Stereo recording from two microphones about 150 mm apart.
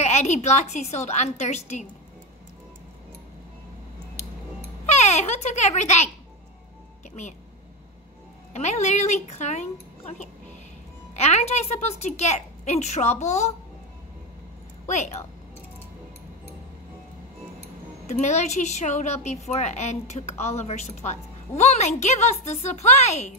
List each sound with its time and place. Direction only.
0.0 s a woman's voice: 45° left (ahead or behind)
4.8 s a child's voice: 50° left (ahead or behind)
8.5 s a woman's voice: 50° left (ahead or behind)
18.0 s a woman's voice: 50° left (ahead or behind)